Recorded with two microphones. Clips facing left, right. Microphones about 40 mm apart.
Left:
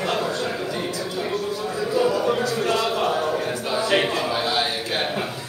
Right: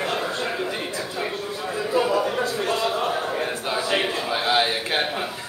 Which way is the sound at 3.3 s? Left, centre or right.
Right.